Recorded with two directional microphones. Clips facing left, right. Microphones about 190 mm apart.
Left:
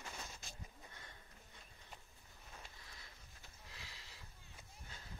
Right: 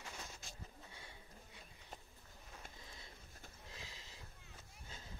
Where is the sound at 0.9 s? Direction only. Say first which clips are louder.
Right 2 dB; 10° right (ahead or behind).